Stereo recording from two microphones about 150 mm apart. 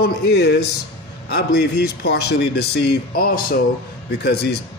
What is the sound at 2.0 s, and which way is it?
A man's voice, 90° left.